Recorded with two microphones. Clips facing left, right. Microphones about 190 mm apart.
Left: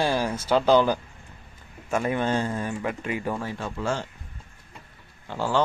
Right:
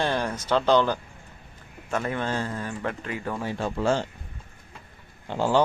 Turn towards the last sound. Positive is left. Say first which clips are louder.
# right 2 dB
turn(degrees=-15)  # may be behind; listen again after turning